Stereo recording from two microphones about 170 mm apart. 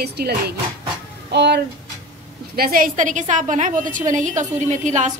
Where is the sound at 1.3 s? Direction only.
85° right.